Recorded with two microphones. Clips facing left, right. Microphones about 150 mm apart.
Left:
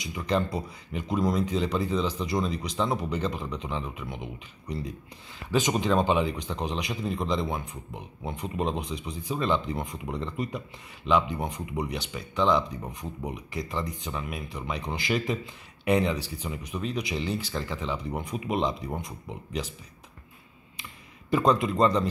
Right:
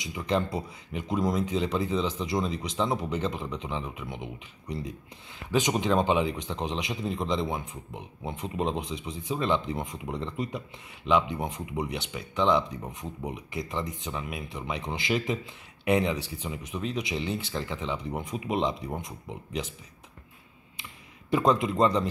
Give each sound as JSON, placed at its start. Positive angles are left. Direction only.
{"t": 0.0, "sound": "speech", "side_deg": -20}
{"t": 21.3, "sound": "speech", "side_deg": -20}